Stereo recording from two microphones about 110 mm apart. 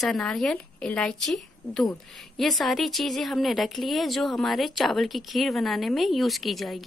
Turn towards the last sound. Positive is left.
turn(degrees=0)  # may be behind; listen again after turning